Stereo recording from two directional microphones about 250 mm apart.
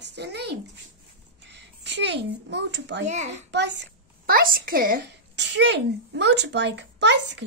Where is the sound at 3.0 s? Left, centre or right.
Right.